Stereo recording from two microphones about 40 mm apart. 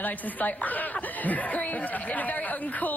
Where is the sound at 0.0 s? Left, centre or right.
Left.